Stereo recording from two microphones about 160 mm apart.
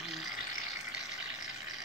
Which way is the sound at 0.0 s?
Centre (ahead or behind).